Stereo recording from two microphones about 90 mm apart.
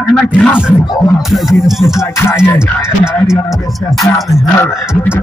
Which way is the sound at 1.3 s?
Centre (ahead or behind).